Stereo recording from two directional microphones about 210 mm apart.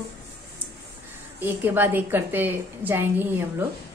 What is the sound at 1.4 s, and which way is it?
A woman's voice, 10° right (ahead or behind).